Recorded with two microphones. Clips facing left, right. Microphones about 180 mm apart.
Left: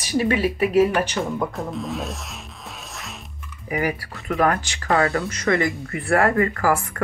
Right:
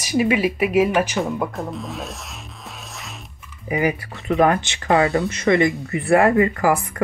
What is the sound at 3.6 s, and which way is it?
Speech, 20° right (ahead or behind).